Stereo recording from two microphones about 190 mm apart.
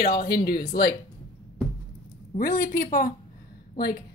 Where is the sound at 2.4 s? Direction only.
50° left (ahead or behind).